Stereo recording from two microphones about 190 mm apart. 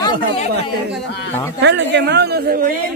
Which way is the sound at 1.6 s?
65° right (ahead or behind).